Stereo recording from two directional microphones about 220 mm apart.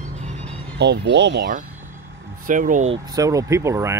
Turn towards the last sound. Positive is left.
turn(degrees=-15)  # may be behind; listen again after turning